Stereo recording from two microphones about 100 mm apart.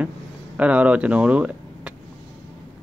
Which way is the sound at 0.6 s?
15° right (ahead or behind).